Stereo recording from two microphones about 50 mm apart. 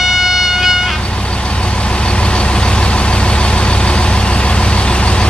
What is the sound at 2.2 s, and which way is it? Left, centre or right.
Vehicle, centre.